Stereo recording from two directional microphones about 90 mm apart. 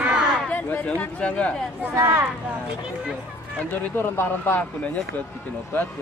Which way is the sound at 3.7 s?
25° left (ahead or behind).